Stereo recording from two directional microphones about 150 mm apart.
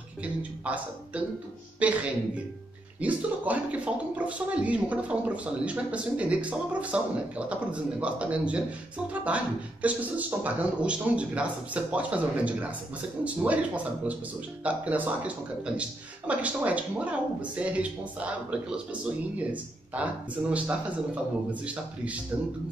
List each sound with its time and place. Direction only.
0.2 s speech: 10° right (ahead or behind)